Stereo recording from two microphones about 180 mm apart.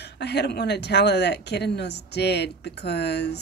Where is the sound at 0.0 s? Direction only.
70° left (ahead or behind).